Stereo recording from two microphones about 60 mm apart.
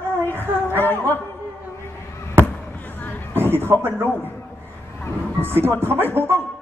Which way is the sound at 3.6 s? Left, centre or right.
Right.